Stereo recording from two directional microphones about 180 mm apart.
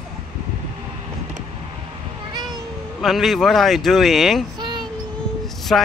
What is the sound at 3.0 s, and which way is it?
Speech, centre (ahead or behind).